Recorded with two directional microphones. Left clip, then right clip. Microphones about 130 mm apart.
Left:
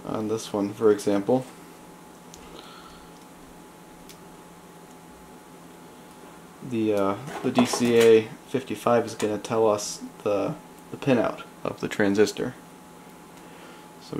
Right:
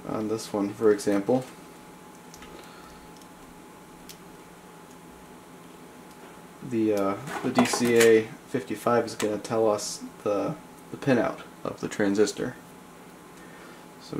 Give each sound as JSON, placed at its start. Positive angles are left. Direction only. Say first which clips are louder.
{"t": 0.0, "sound": "speech", "louder": "left 1 dB", "side_deg": 15}
{"t": 6.9, "sound": "speech", "louder": "left 3 dB", "side_deg": 15}
{"t": 7.2, "sound": "speech", "louder": "left 1 dB", "side_deg": -15}
{"t": 7.9, "sound": "speech", "louder": "left 2 dB", "side_deg": 15}